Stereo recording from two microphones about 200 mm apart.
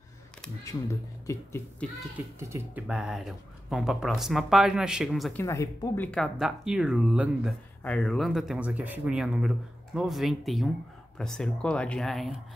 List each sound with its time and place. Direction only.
0.7 s speech: 15° left (ahead or behind)
2.3 s speech: 15° right (ahead or behind)
5.4 s speech: 15° left (ahead or behind)
6.1 s speech: centre (ahead or behind)